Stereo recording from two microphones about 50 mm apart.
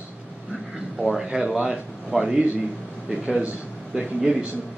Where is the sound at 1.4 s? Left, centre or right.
Centre.